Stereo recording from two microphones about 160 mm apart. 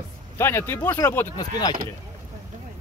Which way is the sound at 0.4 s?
15° left (ahead or behind).